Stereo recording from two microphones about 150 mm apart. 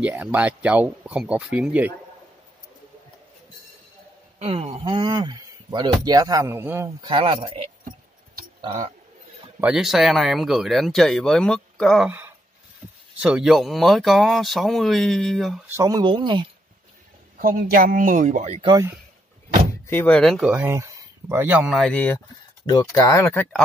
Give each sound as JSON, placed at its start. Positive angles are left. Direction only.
{"t": 0.0, "sound": "speech", "side_deg": -10}
{"t": 4.4, "sound": "speech", "side_deg": -40}
{"t": 7.0, "sound": "speech", "side_deg": -35}
{"t": 9.6, "sound": "speech", "side_deg": -5}
{"t": 12.1, "sound": "a sound", "side_deg": -10}
{"t": 13.2, "sound": "speech", "side_deg": -5}
{"t": 15.6, "sound": "speech", "side_deg": -20}
{"t": 17.4, "sound": "speech", "side_deg": -70}
{"t": 19.9, "sound": "speech", "side_deg": 15}
{"t": 20.3, "sound": "speech", "side_deg": -10}
{"t": 22.7, "sound": "speech", "side_deg": 25}